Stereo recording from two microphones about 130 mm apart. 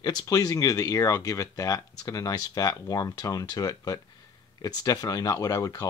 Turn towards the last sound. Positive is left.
turn(degrees=25)  # may be behind; listen again after turning